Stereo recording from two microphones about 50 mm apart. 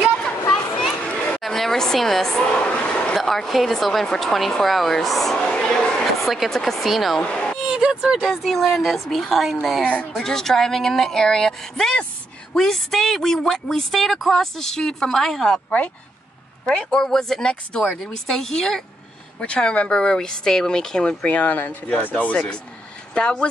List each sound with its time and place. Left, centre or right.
0.2 s children playing: centre
1.4 s a sound: centre
2.6 s a sound: left
3.2 s a woman's voice: centre
5.4 s speech: left
6.2 s a woman's voice: centre
7.2 s speech: left
7.6 s speech: centre
8.2 s a woman's voice: centre
16.6 s speech: centre
19.4 s speech: left
21.2 s speech: left
23.1 s speech: centre